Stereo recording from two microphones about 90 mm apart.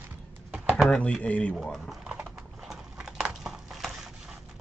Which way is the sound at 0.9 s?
10° left (ahead or behind).